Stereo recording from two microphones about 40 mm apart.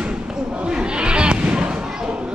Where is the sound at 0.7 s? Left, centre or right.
Right.